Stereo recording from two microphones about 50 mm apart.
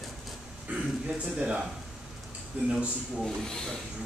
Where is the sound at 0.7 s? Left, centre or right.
Right.